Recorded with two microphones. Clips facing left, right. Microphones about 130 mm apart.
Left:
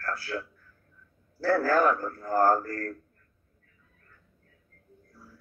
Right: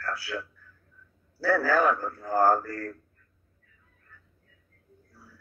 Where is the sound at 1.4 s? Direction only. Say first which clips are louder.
Even; 45° left (ahead or behind).